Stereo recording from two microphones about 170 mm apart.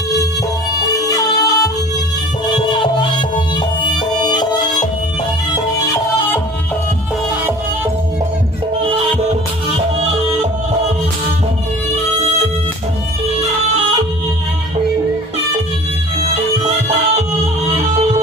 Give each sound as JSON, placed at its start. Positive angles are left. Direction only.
{"t": 0.9, "sound": "music", "side_deg": 20}
{"t": 2.7, "sound": "music", "side_deg": 25}
{"t": 8.9, "sound": "music", "side_deg": -35}